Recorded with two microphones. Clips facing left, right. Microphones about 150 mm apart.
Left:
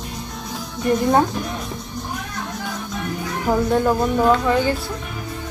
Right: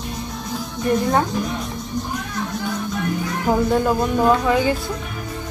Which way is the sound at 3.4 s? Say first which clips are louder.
Even; centre (ahead or behind).